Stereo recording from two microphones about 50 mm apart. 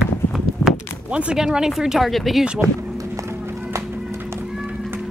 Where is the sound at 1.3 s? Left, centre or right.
Centre.